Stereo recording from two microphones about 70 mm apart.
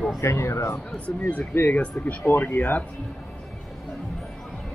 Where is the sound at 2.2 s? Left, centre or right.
Left.